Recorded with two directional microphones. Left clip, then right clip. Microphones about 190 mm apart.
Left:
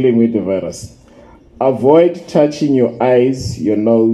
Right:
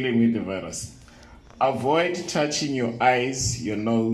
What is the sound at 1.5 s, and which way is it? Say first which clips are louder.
Speech: left 11 dB; 25° left (ahead or behind).